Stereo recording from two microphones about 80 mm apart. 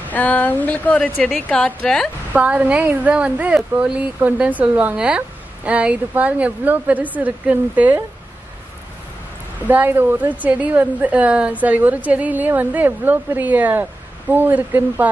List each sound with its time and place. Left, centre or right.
0.1 s a woman's voice: left
2.3 s speech: centre
9.6 s speech: right